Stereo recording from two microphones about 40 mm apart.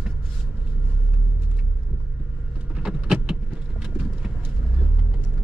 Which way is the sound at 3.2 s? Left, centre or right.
Right.